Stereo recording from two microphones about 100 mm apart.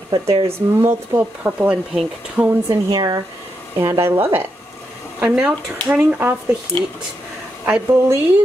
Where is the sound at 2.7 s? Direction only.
40° right (ahead or behind); by 4.5 s 20° right (ahead or behind).